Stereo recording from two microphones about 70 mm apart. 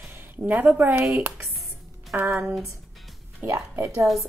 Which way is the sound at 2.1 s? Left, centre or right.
Right.